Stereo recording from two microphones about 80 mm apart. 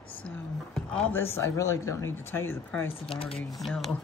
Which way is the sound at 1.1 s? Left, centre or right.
Left.